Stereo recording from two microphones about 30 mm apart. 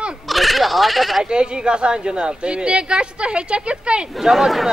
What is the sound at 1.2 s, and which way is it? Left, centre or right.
Speech, right.